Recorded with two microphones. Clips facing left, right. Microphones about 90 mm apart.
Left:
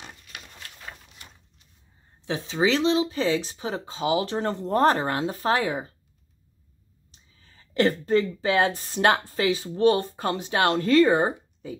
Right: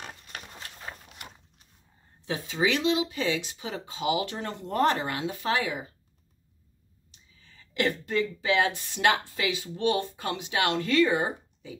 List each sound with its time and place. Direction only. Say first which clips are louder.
2.2 s speech: left 3 dB; 25° left (ahead or behind)
7.1 s speech: even; 35° left (ahead or behind)